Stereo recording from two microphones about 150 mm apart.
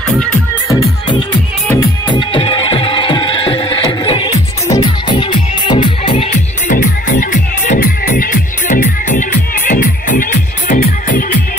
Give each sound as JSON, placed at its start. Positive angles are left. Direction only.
{"t": 1.8, "sound": "music", "side_deg": 30}
{"t": 6.7, "sound": "music", "side_deg": 60}